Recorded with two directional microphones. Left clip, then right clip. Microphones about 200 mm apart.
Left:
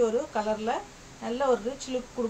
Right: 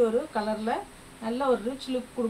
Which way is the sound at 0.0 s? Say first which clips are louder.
Right 1 dB; 20° left (ahead or behind).